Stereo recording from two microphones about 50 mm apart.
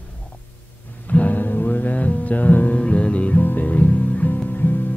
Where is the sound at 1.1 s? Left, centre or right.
Left.